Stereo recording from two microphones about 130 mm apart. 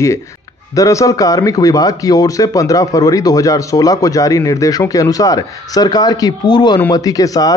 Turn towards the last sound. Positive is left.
turn(degrees=25)  # may be behind; listen again after turning